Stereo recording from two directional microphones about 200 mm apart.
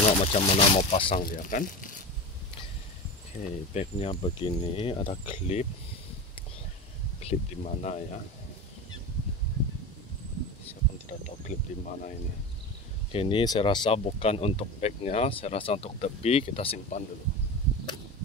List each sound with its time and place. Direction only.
0.0 s speech: 30° left (ahead or behind)
1.1 s speech: 45° left (ahead or behind)
3.3 s speech: 30° left (ahead or behind)
7.2 s speech: 35° left (ahead or behind)
10.7 s insect: 40° left (ahead or behind)
13.1 s speech: 25° left (ahead or behind)